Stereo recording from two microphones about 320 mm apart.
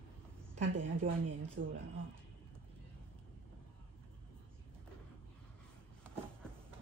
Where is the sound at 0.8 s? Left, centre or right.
Right.